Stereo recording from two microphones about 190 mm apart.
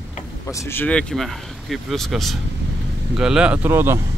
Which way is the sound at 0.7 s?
10° left (ahead or behind).